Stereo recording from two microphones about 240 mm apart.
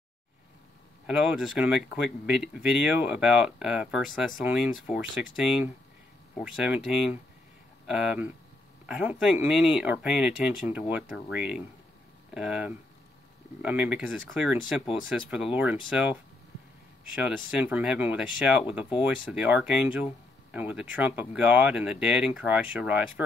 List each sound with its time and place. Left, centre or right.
1.0 s speech: centre